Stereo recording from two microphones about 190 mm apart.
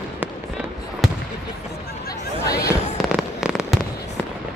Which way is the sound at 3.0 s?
Centre (ahead or behind).